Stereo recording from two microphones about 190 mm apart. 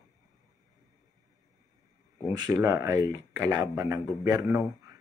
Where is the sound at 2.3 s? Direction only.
20° right (ahead or behind).